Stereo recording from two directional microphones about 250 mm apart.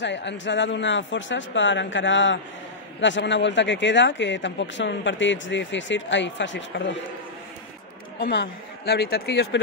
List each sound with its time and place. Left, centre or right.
0.0 s speech: left
8.2 s speech: left